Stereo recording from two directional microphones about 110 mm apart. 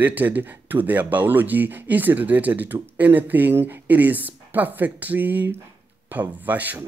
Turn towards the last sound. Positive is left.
turn(degrees=-15)  # may be behind; listen again after turning